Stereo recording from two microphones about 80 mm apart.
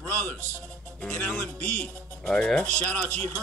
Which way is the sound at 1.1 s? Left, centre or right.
Centre.